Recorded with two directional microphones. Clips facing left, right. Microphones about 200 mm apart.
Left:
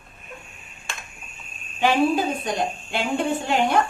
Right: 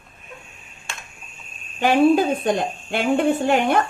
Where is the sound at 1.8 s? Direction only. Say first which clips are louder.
Right 4 dB; 55° right (ahead or behind).